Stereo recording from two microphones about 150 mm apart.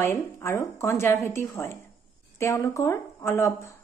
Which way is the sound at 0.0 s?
20° left (ahead or behind).